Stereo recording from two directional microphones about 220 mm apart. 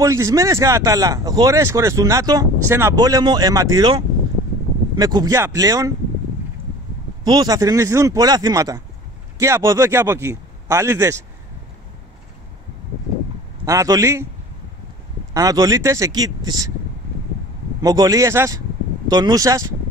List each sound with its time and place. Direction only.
0.0 s speech: 15° right (ahead or behind)
7.2 s speech: 15° right (ahead or behind)
13.7 s speech: 15° right (ahead or behind)
15.3 s speech: 15° right (ahead or behind)
17.8 s speech: 15° right (ahead or behind)